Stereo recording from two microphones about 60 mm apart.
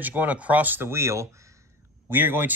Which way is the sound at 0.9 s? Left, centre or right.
Right.